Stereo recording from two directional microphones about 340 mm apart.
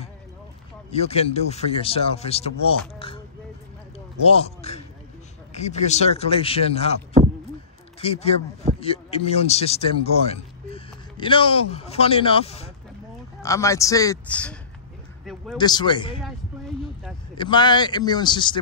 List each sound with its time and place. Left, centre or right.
0.9 s speech: centre
4.3 s speech: centre
8.0 s speech: centre
17.4 s speech: centre